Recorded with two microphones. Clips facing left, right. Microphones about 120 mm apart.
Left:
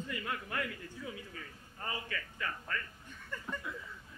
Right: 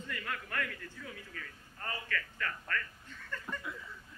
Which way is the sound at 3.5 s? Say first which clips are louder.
Left 1 dB; centre (ahead or behind).